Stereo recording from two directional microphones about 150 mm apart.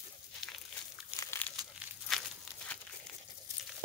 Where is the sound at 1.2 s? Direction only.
15° left (ahead or behind).